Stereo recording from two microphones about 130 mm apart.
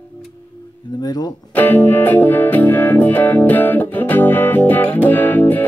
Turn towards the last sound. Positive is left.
turn(degrees=15)  # may be behind; listen again after turning